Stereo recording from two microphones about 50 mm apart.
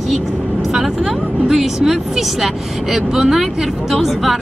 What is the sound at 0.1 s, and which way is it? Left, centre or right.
Speech, centre.